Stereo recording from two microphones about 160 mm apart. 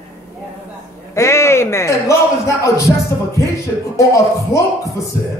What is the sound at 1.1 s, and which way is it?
Speech, 15° left (ahead or behind).